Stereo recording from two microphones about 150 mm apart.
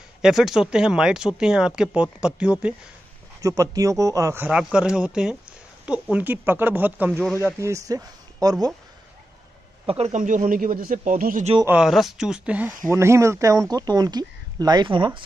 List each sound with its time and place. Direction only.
0.2 s speech: centre (ahead or behind)
3.3 s speech: 20° right (ahead or behind)
4.7 s speech: 5° right (ahead or behind); by 8.7 s 25° right (ahead or behind)
9.8 s speech: 45° right (ahead or behind)
10.2 s speech: 60° right (ahead or behind)
11.6 s speech: 5° right (ahead or behind); by 15.2 s 35° right (ahead or behind)